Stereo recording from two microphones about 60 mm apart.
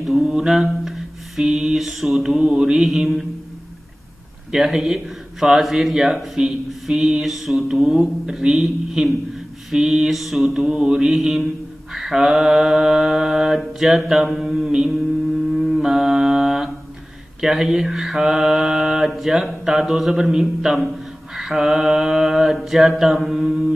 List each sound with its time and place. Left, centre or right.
0.2 s mantra: centre
4.5 s mantra: centre